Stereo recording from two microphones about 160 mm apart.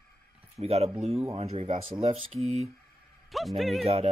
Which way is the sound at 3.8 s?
40° right (ahead or behind).